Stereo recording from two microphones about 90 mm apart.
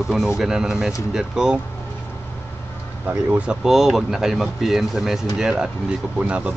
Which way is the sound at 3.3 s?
10° right (ahead or behind).